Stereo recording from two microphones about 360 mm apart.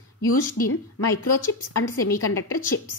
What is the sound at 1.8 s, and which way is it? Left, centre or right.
Speech, left.